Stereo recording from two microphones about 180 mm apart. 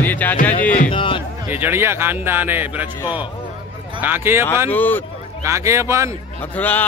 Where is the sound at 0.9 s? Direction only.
30° left (ahead or behind).